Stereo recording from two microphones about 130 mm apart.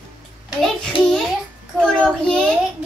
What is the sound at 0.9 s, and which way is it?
Speech, 45° left (ahead or behind).